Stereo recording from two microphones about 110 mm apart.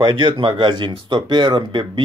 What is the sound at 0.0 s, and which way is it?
Speech, 45° right (ahead or behind).